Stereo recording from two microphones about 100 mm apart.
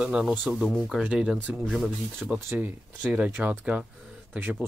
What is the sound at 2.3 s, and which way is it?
Speech, 15° right (ahead or behind).